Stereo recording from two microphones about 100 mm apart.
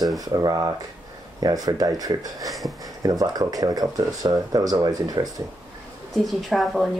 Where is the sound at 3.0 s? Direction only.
35° right (ahead or behind).